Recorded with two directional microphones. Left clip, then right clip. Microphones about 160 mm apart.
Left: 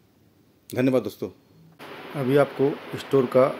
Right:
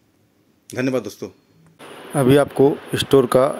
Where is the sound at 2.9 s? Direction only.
70° right (ahead or behind).